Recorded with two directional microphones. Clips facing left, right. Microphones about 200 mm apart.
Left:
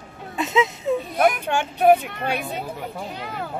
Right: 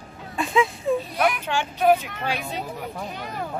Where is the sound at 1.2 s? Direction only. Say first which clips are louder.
Left 3 dB; 45° left (ahead or behind).